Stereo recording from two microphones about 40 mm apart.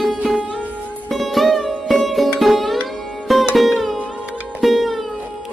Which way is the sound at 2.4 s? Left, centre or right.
Centre.